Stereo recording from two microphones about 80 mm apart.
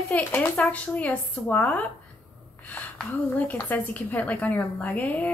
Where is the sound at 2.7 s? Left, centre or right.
Centre.